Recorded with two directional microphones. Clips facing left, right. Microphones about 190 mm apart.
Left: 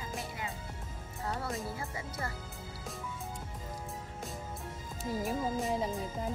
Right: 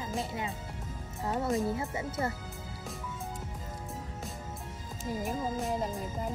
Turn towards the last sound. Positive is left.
turn(degrees=0)  # may be behind; listen again after turning